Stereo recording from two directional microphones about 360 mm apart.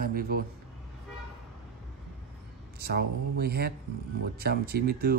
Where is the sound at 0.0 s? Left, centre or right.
Right.